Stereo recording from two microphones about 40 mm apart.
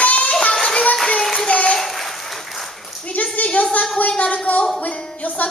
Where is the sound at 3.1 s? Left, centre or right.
Left.